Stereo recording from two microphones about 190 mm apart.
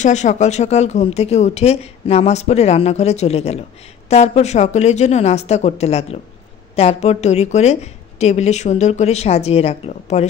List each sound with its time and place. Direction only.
0.0 s speech: 40° left (ahead or behind)